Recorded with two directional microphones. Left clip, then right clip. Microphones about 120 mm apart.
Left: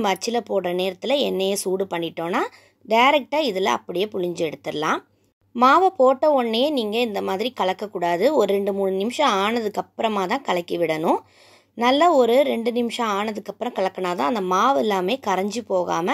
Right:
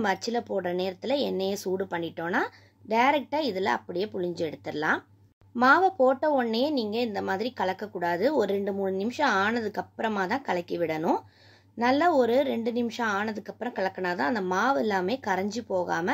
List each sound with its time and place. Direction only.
0.0 s speech: 45° left (ahead or behind)